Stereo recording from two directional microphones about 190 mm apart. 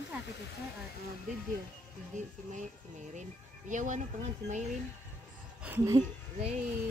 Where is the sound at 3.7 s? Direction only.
40° right (ahead or behind).